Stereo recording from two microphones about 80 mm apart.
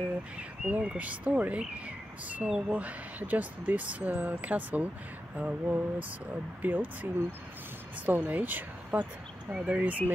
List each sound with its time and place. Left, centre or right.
0.4 s speech: centre